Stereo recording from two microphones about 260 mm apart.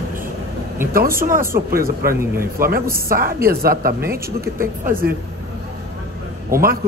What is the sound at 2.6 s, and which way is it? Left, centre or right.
A woman's voice, right.